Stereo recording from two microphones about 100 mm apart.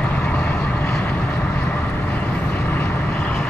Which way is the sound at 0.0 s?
15° left (ahead or behind).